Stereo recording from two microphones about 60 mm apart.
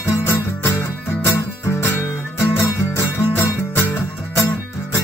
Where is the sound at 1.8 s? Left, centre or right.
Left.